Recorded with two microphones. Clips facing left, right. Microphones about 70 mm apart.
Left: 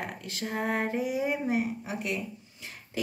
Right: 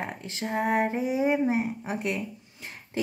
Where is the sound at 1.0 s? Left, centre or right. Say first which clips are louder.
Right 4 dB; right.